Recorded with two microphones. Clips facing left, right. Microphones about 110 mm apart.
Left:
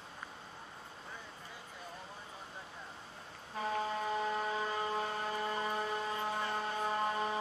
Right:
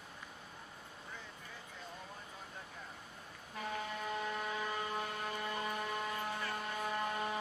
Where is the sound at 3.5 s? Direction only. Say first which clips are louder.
Left 6 dB; 35° left (ahead or behind).